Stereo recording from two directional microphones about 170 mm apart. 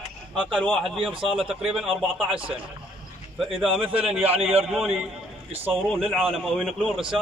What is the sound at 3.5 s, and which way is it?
A man's voice, 5° right (ahead or behind).